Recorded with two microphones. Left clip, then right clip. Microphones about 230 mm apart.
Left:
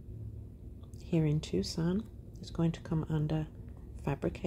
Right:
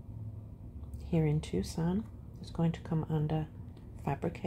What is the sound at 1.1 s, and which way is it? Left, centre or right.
Speech, centre.